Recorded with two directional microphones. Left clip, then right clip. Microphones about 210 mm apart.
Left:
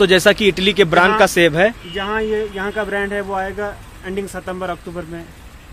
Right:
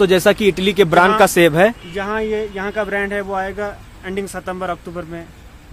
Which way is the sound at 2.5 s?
10° right (ahead or behind).